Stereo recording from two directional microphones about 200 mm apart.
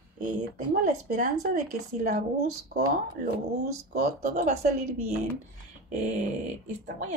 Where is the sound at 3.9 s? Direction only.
40° right (ahead or behind).